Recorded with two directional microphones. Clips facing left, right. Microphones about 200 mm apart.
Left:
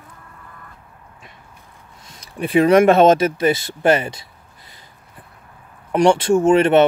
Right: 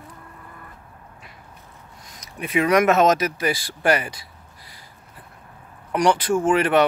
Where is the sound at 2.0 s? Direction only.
30° left (ahead or behind).